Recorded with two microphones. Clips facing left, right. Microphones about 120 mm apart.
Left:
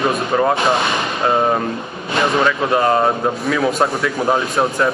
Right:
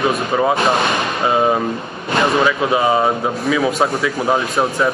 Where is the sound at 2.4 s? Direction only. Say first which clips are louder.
Even; 5° right (ahead or behind).